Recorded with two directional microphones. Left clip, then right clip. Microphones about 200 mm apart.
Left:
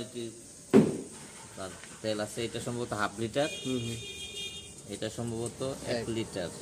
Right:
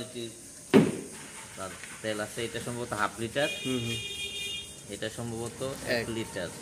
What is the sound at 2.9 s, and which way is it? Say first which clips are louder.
Speech: right 3 dB; 50° left (ahead or behind).